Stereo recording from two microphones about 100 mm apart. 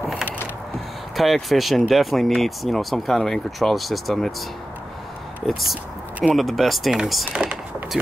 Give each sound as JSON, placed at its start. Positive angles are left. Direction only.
{"t": 1.1, "sound": "speech", "side_deg": 0}
{"t": 6.2, "sound": "speech", "side_deg": 0}
{"t": 7.3, "sound": "a sound", "side_deg": -10}